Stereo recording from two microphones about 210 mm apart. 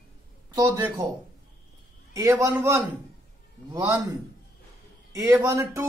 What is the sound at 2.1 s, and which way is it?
A woman's voice, 15° right (ahead or behind).